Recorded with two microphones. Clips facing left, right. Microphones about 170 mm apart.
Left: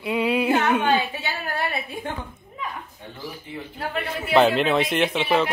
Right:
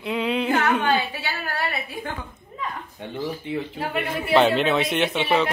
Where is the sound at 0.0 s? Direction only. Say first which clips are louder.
Left 2 dB; 5° left (ahead or behind).